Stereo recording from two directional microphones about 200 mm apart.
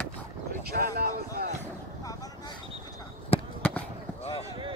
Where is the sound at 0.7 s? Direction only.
50° right (ahead or behind).